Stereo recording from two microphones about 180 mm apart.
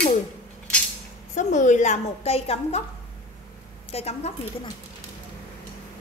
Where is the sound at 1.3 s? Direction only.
45° left (ahead or behind).